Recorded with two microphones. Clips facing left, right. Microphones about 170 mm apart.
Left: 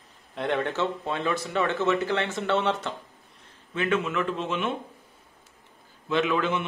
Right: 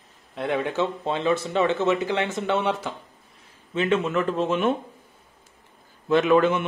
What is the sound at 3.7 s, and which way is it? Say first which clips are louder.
Speech: right 3 dB; 30° right (ahead or behind).